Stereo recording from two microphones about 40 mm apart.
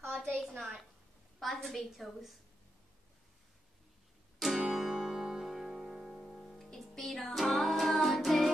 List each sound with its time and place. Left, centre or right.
0.0 s a sound: centre
1.4 s a woman's voice: centre
4.4 s music: centre
6.4 s music: centre